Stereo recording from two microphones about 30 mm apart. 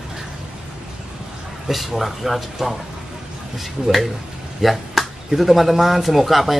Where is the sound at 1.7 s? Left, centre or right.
Centre.